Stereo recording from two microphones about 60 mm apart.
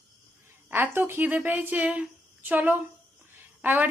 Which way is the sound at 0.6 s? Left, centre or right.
Right.